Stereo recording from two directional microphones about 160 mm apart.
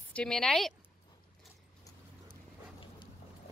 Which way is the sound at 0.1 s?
5° left (ahead or behind).